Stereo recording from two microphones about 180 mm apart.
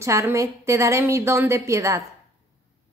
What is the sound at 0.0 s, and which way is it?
A woman's voice, 15° right (ahead or behind).